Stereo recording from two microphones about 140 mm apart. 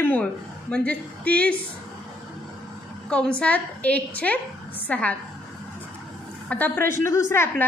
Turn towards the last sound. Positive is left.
turn(degrees=15)  # may be behind; listen again after turning